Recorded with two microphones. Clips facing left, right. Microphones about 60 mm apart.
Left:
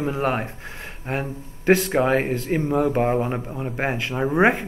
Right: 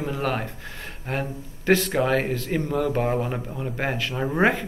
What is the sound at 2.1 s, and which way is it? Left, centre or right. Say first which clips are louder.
Speech: left 2 dB; left.